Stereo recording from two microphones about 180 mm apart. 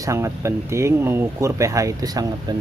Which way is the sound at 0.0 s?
15° right (ahead or behind).